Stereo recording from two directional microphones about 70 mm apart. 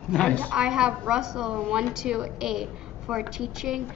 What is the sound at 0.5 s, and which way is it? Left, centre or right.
A woman's voice, centre.